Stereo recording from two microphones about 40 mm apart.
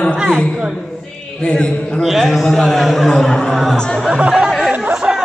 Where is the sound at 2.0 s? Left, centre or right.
Centre.